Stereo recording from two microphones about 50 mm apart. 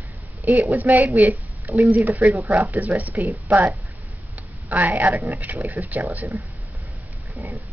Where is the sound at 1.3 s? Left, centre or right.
Right.